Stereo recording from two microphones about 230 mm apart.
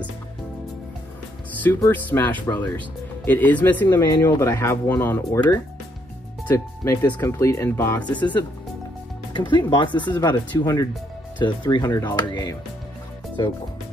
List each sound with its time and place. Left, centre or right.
1.6 s speech: centre
9.3 s speech: left